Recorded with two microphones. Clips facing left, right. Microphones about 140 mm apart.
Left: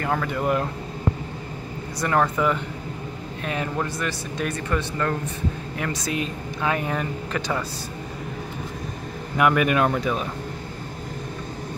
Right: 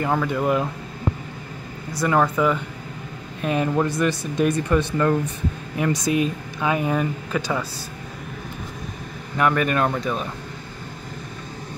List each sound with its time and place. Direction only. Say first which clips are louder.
0.0 s speech: right 3 dB; 10° right (ahead or behind)
2.0 s speech: right 2 dB; 5° right (ahead or behind)
3.4 s speech: right 6 dB; 20° right (ahead or behind)
9.4 s speech: left 1 dB; 10° left (ahead or behind)